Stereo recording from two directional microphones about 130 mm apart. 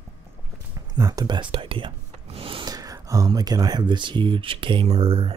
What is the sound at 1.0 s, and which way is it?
Speech, 30° right (ahead or behind).